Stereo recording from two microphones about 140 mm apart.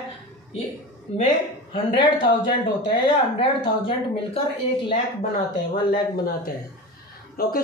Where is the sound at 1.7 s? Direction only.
40° left (ahead or behind).